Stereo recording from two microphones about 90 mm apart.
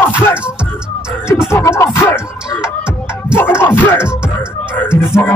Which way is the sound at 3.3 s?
30° left (ahead or behind).